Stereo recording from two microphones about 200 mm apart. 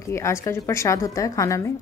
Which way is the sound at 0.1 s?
15° left (ahead or behind).